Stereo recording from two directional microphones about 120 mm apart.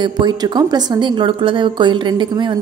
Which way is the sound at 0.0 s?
35° right (ahead or behind).